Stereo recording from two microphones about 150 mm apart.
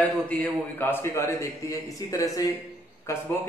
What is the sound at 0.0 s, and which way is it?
A man's voice, 10° left (ahead or behind).